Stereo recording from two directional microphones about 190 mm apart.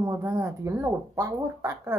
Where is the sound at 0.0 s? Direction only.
15° right (ahead or behind).